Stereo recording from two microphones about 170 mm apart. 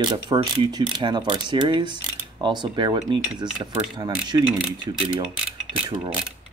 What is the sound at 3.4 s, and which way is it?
Cutlery, 5° right (ahead or behind).